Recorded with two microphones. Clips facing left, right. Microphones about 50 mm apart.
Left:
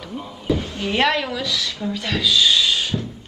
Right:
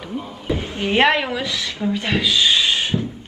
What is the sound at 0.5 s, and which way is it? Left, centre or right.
A woman's voice, right.